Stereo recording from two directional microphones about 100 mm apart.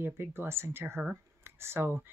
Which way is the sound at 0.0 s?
25° right (ahead or behind).